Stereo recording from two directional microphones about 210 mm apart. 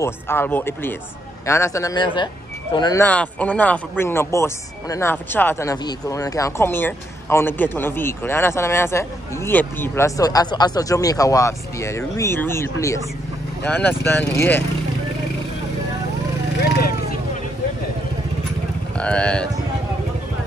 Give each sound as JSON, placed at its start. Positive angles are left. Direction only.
{"t": 0.0, "sound": "speech", "side_deg": 10}
{"t": 18.9, "sound": "speech", "side_deg": 5}